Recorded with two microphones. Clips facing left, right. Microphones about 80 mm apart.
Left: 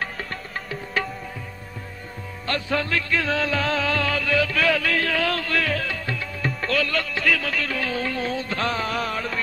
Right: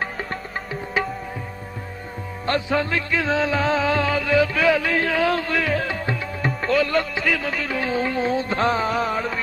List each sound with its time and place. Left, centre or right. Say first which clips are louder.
0.0 s music: right 3 dB; centre
2.4 s music: right 4 dB; right
6.6 s music: right 5 dB; centre
7.7 s music: right 4 dB; right